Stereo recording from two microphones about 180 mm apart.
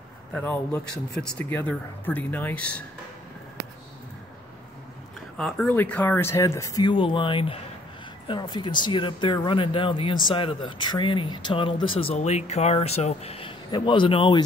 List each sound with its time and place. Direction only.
0.3 s speech: 10° left (ahead or behind)
5.4 s speech: 5° left (ahead or behind); by 14.4 s 30° left (ahead or behind)